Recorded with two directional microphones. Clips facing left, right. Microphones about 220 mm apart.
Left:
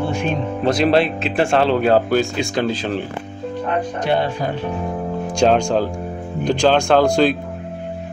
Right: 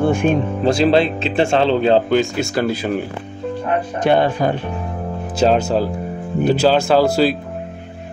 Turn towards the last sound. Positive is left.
turn(degrees=-5)  # may be behind; listen again after turning